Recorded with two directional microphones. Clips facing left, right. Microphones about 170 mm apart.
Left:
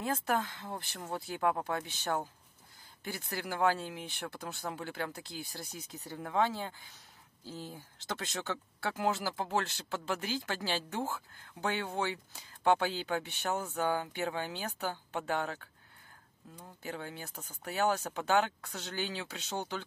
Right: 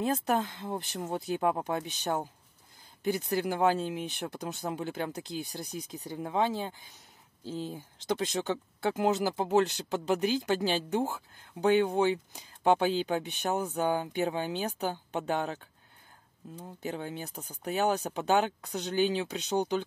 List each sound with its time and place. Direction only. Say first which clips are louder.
0.0 s speech: right 4 dB; 20° right (ahead or behind)